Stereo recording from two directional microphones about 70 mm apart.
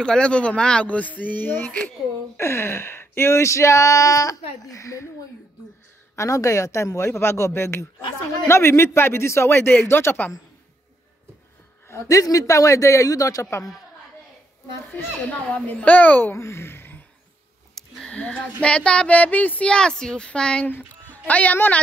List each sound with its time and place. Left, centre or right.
0.0 s speech: centre; by 5.1 s left
6.1 s a man's voice: left
11.9 s speech: left
14.9 s speech: left
16.3 s a sound: left
17.7 s a sound: centre
18.1 s child singing: centre
19.7 s child singing: centre
20.6 s speech: left